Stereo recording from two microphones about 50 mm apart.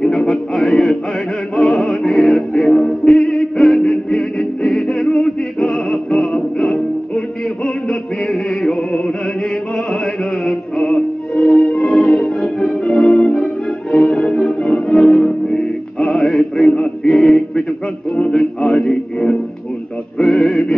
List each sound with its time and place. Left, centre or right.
0.0 s a sound: centre
1.5 s music: centre
7.6 s music: centre
10.4 s music: centre
16.7 s male singing: centre
17.2 s a sound: centre
18.1 s music: left
18.4 s music: centre
20.2 s male singing: centre